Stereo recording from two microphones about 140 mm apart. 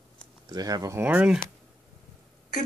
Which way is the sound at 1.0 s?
10° right (ahead or behind).